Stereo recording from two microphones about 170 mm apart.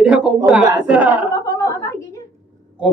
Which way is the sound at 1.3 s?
20° left (ahead or behind).